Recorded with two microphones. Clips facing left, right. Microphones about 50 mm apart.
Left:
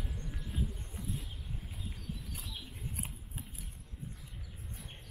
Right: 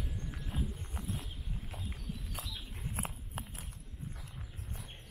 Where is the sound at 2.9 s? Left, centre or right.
Right.